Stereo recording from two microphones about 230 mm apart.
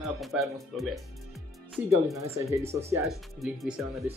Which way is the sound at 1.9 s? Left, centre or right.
Centre.